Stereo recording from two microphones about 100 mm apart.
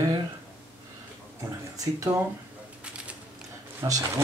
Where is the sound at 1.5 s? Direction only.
35° right (ahead or behind).